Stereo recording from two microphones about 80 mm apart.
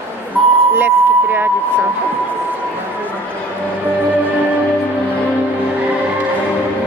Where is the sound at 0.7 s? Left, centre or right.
Right.